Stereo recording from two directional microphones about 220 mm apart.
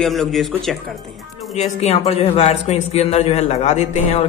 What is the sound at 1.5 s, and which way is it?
A man's voice, 30° left (ahead or behind).